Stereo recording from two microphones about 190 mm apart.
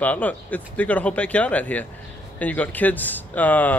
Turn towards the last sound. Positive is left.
turn(degrees=10)  # may be behind; listen again after turning